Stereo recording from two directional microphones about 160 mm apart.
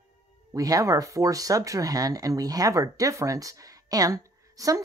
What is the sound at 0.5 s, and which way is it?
Speech, 20° right (ahead or behind).